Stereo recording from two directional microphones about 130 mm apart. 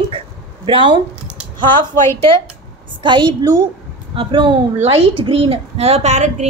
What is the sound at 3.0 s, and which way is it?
A woman's voice, 35° right (ahead or behind).